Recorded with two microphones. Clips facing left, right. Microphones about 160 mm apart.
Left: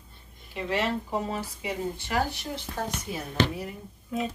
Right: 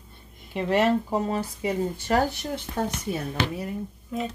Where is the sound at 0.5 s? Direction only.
55° right (ahead or behind).